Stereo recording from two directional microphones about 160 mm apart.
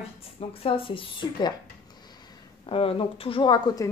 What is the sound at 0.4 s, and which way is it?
Speech, 35° left (ahead or behind).